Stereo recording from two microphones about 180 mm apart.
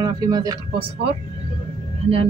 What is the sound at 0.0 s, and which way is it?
A man's voice, 20° right (ahead or behind).